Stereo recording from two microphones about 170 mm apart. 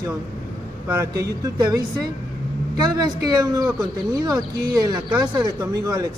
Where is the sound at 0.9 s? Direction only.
15° right (ahead or behind).